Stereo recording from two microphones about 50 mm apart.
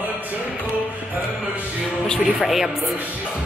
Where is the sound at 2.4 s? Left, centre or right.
Centre.